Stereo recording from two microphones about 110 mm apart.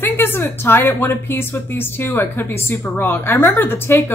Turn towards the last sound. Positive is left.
turn(degrees=20)  # may be behind; listen again after turning